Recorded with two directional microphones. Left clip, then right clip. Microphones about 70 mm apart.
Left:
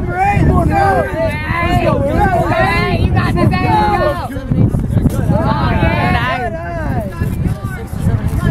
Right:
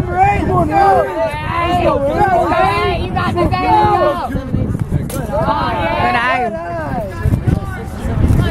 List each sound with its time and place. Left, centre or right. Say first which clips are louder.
0.1 s vehicle: right 1 dB; left
5.3 s a sound: right 2 dB; left
6.1 s vehicle: right 3 dB; centre